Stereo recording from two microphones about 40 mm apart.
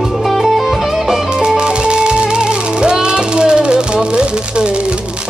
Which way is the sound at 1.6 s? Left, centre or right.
Right.